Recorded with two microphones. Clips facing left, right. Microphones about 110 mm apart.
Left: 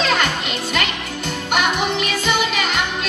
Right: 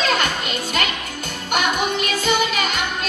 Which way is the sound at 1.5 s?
45° right (ahead or behind).